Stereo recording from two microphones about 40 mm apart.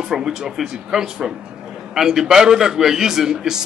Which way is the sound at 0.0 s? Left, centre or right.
Centre.